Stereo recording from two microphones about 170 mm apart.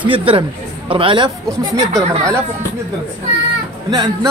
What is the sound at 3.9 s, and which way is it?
Speech, 25° right (ahead or behind).